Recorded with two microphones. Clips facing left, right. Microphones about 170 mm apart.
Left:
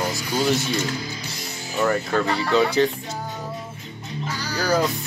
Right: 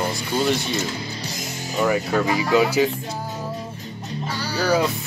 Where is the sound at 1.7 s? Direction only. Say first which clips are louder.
Right 1 dB; 10° right (ahead or behind).